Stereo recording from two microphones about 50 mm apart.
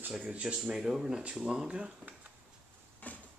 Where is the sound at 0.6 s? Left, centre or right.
Centre.